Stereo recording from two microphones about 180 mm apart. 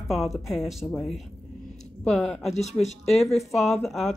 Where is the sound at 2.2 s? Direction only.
35° left (ahead or behind).